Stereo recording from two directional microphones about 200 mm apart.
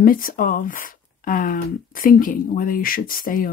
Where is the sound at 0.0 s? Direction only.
45° left (ahead or behind).